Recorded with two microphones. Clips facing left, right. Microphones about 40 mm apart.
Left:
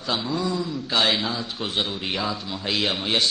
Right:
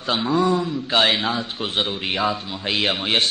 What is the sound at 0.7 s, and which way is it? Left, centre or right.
A man's voice, right.